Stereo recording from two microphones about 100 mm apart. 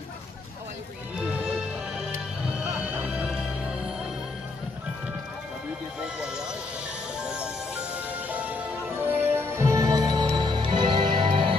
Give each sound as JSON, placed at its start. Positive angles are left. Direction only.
{"t": 1.1, "sound": "music", "side_deg": -10}
{"t": 6.1, "sound": "music", "side_deg": -10}